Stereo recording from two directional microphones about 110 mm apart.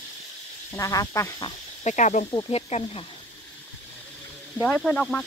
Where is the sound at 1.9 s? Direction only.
90° left.